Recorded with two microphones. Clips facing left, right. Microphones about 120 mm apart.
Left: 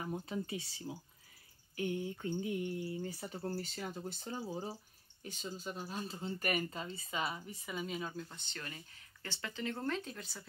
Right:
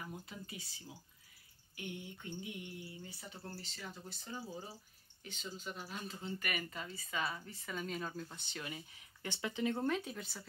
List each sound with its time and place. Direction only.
0.0 s speech: 30° left (ahead or behind)
1.8 s speech: 40° left (ahead or behind); by 10.4 s 5° right (ahead or behind)